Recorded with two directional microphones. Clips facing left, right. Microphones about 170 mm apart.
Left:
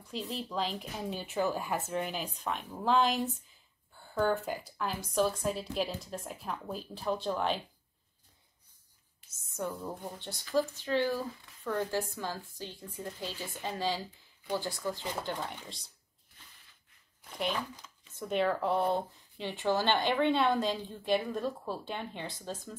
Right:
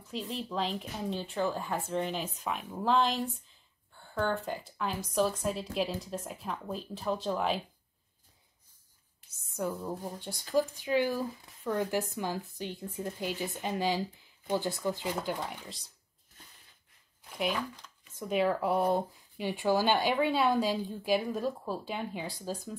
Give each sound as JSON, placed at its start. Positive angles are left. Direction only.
{"t": 0.1, "sound": "speech", "side_deg": 0}
{"t": 9.6, "sound": "speech", "side_deg": 0}
{"t": 15.2, "sound": "speech", "side_deg": -5}
{"t": 18.3, "sound": "speech", "side_deg": -5}